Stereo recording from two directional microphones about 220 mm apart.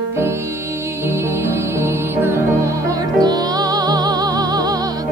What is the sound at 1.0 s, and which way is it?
Music, 10° right (ahead or behind).